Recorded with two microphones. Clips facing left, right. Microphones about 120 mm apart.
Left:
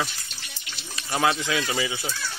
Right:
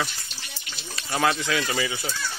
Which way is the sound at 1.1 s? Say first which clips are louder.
Even; 10° left (ahead or behind).